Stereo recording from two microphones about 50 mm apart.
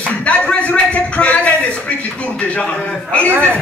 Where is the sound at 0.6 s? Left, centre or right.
Left.